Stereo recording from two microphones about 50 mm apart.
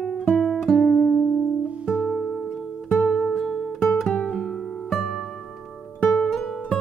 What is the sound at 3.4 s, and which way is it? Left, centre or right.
Music, centre.